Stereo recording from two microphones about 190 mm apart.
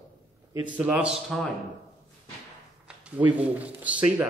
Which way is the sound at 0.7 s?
5° right (ahead or behind).